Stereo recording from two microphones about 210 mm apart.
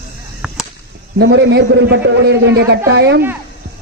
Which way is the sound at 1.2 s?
55° right (ahead or behind).